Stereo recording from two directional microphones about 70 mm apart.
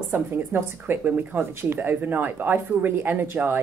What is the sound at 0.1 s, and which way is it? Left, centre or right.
Speech, right.